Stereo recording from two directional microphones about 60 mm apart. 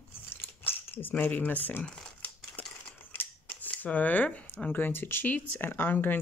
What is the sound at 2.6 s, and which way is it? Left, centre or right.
Scissors, left.